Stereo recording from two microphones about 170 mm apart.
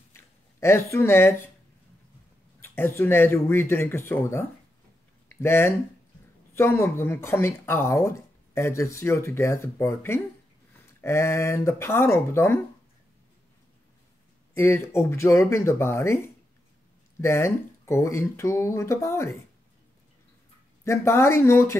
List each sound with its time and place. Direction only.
0.1 s a sound: 15° left (ahead or behind)
0.9 s speech: 15° left (ahead or behind)
2.6 s speech: 15° left (ahead or behind)
14.5 s speech: 15° left (ahead or behind)
20.8 s speech: 15° left (ahead or behind)